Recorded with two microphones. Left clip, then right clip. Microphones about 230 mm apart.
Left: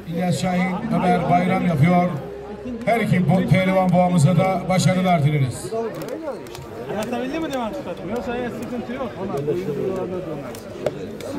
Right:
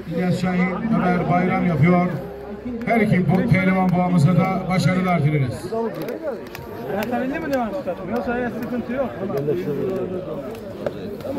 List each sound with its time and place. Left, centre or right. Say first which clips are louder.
0.2 s a man's voice: left 1 dB; left
8.1 s a man's voice: right 1 dB; left